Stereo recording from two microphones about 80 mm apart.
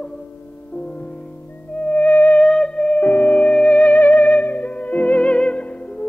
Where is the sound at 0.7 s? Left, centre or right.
Centre.